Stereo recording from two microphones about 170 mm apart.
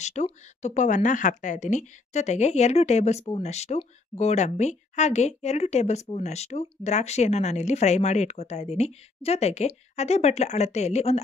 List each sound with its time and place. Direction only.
0.0 s speech: 45° left (ahead or behind)